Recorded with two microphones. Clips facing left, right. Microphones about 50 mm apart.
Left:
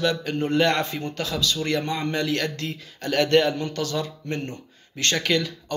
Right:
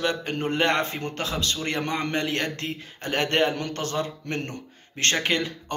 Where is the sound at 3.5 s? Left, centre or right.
Right.